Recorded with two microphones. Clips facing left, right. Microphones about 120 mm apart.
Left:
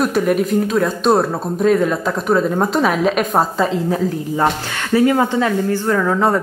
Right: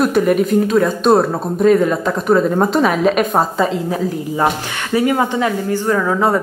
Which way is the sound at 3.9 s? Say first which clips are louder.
Left 1 dB; 10° right (ahead or behind).